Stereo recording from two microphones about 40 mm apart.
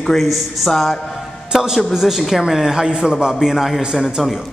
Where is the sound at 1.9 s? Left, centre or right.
Centre.